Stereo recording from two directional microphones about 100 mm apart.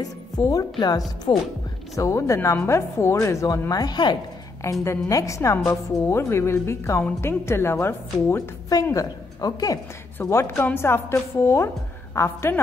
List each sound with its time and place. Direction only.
0.0 s a woman's voice: 35° left (ahead or behind)
2.0 s speech: 30° left (ahead or behind); by 4.2 s 50° left (ahead or behind)
4.8 s speech: 30° left (ahead or behind)
8.8 s a woman's voice: 35° left (ahead or behind)